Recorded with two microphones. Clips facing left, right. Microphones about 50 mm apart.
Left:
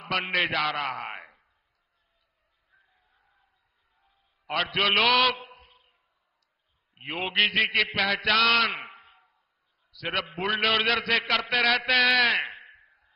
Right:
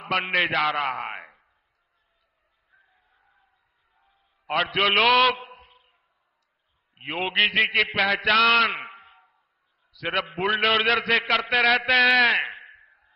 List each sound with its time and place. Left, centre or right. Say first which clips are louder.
0.0 s a man's voice: right 3 dB; centre
2.7 s chicken: right 3 dB; centre
4.5 s a man's voice: right 3 dB; centre
4.9 s a sound: right 4 dB; centre
7.0 s a man's voice: right 2 dB; centre
12.0 s a man's voice: right 3 dB; centre
12.3 s a sound: right 3 dB; centre